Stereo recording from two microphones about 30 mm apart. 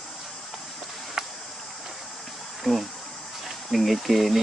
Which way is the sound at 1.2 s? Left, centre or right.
Centre.